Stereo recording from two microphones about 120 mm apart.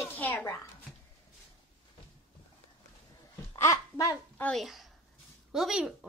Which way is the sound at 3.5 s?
30° left (ahead or behind).